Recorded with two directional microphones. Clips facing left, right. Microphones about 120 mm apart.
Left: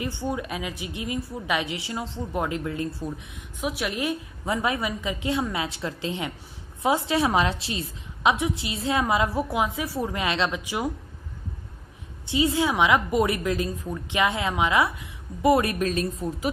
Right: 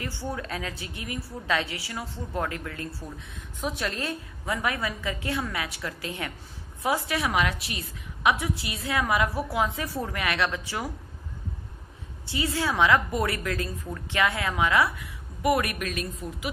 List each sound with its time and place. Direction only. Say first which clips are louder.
0.0 s a woman's voice: left 4 dB; 20° left (ahead or behind)
12.3 s a woman's voice: left 5 dB; 20° left (ahead or behind); by 16.4 s 35° left (ahead or behind)